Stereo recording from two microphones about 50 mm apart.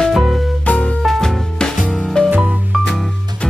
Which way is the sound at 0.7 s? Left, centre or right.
Left.